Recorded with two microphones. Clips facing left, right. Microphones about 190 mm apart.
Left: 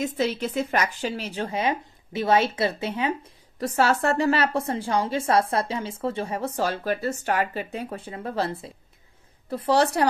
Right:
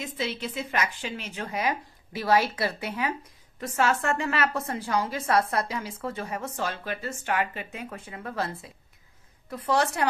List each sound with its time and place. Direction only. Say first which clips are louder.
0.0 s a woman's voice: left 7 dB; 45° left (ahead or behind); by 3.2 s 25° left (ahead or behind)
3.5 s a woman's voice: left 3 dB; 35° left (ahead or behind)